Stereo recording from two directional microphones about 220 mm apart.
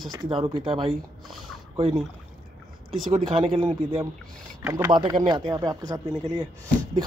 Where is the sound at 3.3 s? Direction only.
25° right (ahead or behind).